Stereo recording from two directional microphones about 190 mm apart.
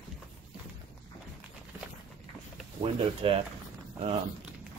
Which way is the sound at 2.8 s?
30° right (ahead or behind).